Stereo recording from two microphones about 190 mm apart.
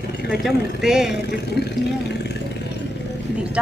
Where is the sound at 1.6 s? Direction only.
60° left (ahead or behind).